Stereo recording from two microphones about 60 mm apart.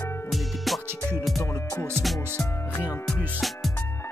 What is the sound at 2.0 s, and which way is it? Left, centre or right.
Music, centre.